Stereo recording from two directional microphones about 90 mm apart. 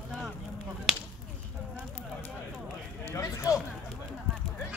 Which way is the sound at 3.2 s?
40° left (ahead or behind).